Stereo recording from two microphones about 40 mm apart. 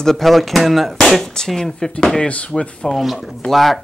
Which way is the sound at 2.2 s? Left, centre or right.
Left.